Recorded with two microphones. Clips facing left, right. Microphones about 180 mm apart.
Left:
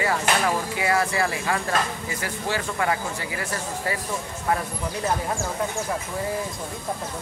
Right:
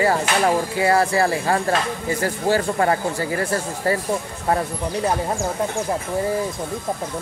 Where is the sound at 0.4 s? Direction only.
35° right (ahead or behind).